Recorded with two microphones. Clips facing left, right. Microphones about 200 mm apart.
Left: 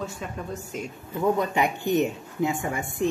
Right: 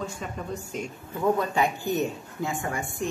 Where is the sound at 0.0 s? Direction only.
Centre (ahead or behind).